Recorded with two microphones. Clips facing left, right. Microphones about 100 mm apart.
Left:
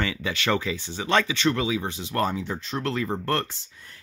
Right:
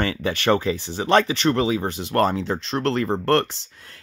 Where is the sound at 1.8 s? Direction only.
55° right (ahead or behind); by 4.0 s 80° right.